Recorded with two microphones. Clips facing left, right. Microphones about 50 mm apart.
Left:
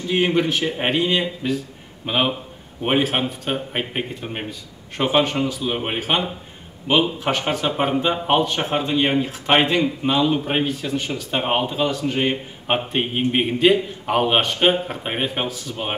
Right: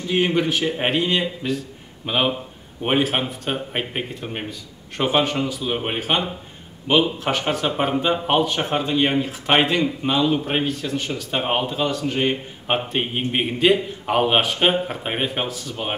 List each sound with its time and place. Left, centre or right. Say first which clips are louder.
0.1 s speech: left 1 dB; centre